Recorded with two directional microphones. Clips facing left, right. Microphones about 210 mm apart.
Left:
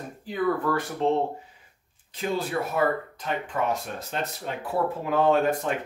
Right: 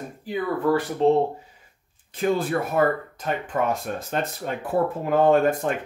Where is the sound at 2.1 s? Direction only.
50° right (ahead or behind).